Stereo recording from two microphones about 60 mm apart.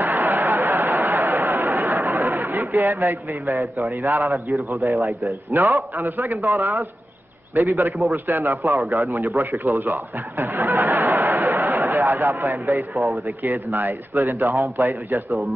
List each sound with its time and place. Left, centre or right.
0.0 s a sound: right
3.9 s a man's voice: right
5.5 s a man's voice: right
9.4 s a sound: right
12.0 s a man's voice: right
12.9 s speech: centre
13.4 s a man's voice: right